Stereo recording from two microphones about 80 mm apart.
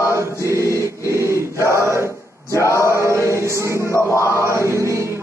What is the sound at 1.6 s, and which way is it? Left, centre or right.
Chant, right.